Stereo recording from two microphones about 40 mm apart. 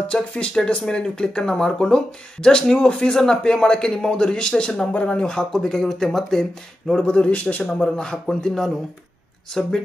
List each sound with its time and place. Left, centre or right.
0.1 s speech: left; by 6.4 s centre
7.0 s a man's voice: left
7.7 s speech: centre